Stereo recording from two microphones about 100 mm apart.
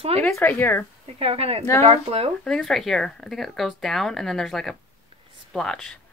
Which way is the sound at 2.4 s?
5° left (ahead or behind).